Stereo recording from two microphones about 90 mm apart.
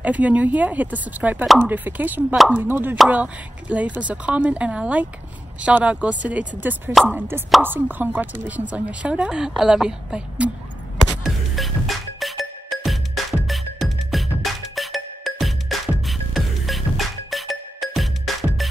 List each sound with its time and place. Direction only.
0.0 s a woman's voice: 15° right (ahead or behind)
11.2 s music: centre (ahead or behind)